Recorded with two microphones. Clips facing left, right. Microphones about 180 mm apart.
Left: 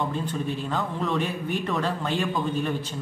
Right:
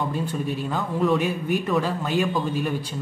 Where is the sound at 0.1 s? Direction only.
10° right (ahead or behind).